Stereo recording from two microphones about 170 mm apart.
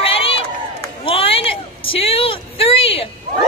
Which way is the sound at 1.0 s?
35° left (ahead or behind).